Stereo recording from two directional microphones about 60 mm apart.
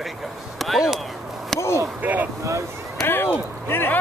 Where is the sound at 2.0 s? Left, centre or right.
Right.